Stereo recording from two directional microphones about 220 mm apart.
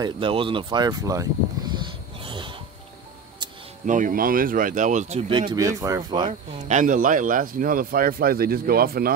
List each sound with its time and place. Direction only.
0.0 s a sound: 25° right (ahead or behind)
3.8 s speech: 35° right (ahead or behind)
5.1 s speech: 25° right (ahead or behind)
6.7 s speech: 35° right (ahead or behind)